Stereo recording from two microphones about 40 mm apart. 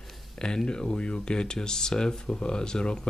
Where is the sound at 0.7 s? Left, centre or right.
Left.